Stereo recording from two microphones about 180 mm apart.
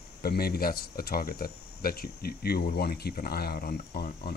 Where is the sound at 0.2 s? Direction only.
60° left (ahead or behind).